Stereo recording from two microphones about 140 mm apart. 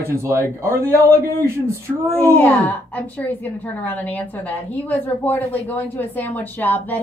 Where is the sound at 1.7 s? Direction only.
20° right (ahead or behind).